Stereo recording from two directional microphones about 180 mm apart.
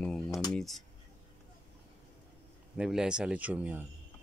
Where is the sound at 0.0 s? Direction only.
5° left (ahead or behind).